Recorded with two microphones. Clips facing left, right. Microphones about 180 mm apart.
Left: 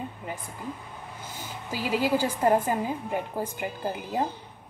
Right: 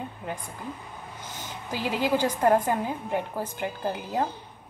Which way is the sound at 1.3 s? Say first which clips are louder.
Right 1 dB; 10° left (ahead or behind).